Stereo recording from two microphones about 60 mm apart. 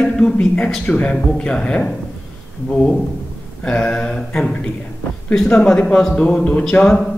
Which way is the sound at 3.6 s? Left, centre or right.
Centre.